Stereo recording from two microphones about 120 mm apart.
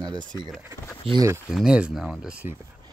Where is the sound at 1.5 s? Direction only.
5° right (ahead or behind).